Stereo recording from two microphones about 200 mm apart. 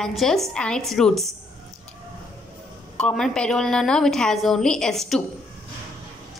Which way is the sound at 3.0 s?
Centre (ahead or behind).